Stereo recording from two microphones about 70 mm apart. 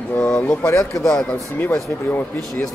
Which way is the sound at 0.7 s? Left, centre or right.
Left.